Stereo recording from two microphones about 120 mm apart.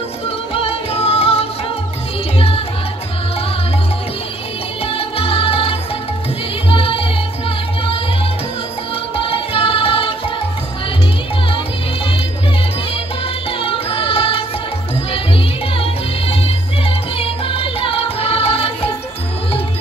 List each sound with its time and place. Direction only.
0.6 s music: 55° left (ahead or behind)
4.8 s music: 50° left (ahead or behind)
9.1 s music: 50° left (ahead or behind)
13.5 s music: 50° left (ahead or behind)